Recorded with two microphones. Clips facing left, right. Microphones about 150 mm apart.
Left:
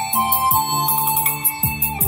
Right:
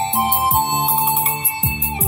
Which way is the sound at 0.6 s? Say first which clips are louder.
Right 2 dB; 20° right (ahead or behind).